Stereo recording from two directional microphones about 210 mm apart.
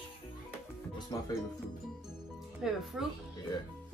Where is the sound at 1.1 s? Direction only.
15° left (ahead or behind).